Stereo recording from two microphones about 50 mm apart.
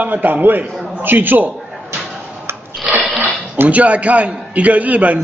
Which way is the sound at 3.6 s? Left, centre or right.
Right.